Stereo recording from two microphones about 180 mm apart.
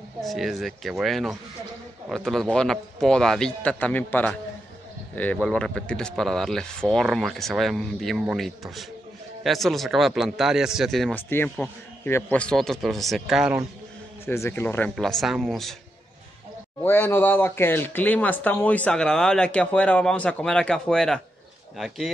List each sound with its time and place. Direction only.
0.2 s a man's voice: centre (ahead or behind)
14.2 s a man's voice: 15° left (ahead or behind)
16.8 s a man's voice: 10° left (ahead or behind)